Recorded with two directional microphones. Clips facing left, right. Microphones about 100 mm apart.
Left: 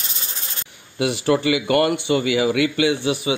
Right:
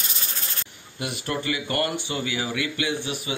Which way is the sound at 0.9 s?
90° left.